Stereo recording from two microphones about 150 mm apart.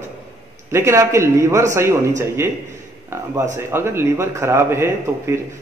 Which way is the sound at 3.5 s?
15° right (ahead or behind).